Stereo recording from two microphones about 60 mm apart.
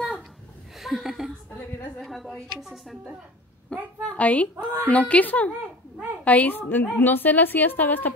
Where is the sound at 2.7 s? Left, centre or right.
Centre.